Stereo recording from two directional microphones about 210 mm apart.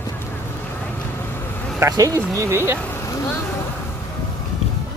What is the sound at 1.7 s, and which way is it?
Speech, 15° right (ahead or behind).